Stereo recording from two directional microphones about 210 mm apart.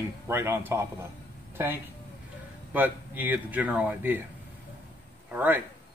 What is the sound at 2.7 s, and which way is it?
Speech, 10° right (ahead or behind).